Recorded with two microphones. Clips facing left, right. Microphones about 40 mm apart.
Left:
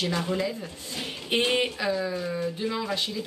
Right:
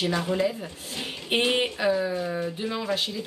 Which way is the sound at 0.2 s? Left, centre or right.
Centre.